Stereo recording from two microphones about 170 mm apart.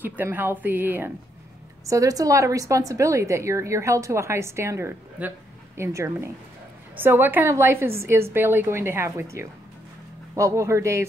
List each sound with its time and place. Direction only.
0.0 s a woman's voice: 10° right (ahead or behind)